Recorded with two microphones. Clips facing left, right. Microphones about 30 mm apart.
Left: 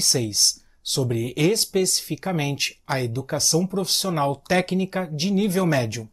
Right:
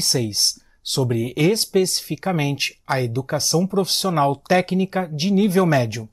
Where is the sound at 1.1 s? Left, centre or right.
Centre.